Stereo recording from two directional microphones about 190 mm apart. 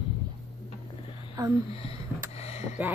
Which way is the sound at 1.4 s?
15° right (ahead or behind).